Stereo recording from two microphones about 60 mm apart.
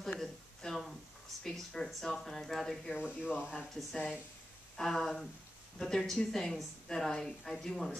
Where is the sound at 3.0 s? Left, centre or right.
Centre.